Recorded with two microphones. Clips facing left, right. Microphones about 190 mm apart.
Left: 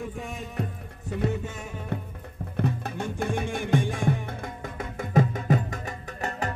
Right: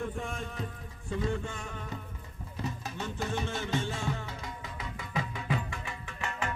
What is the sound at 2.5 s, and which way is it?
Music, 60° left (ahead or behind).